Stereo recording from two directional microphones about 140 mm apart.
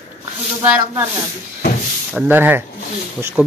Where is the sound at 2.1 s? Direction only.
15° right (ahead or behind).